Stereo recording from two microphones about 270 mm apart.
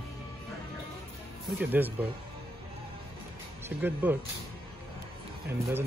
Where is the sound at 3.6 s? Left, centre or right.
Centre.